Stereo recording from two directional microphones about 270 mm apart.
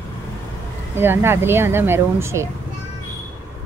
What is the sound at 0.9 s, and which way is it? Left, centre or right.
A woman's voice, centre.